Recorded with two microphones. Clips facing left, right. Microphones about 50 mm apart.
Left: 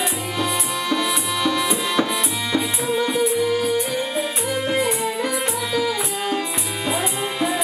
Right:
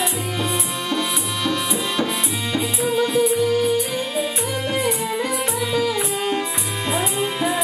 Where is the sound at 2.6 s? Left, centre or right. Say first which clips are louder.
Right 3 dB; left.